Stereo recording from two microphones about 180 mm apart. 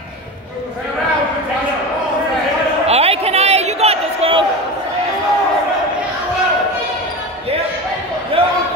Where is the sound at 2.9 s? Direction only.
35° right (ahead or behind).